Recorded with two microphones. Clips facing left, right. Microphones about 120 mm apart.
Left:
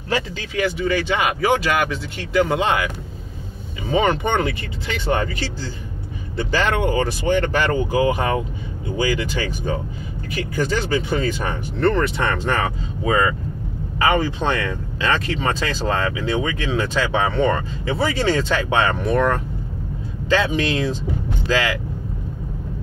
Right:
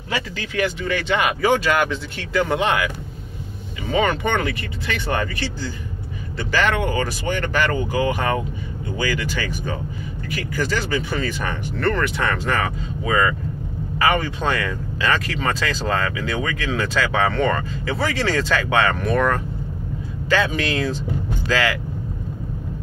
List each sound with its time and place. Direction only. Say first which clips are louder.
0.7 s speech: left 1 dB; 10° left (ahead or behind)
3.9 s speech: left 1 dB; 25° left (ahead or behind)
6.5 s speech: left 1 dB; 25° left (ahead or behind)